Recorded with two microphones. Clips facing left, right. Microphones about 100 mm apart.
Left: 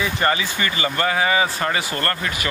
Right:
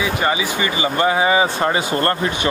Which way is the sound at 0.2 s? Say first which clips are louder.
Right 2 dB; 15° right (ahead or behind).